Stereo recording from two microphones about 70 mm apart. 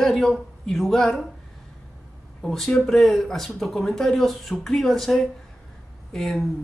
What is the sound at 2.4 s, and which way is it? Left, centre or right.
Speech, centre.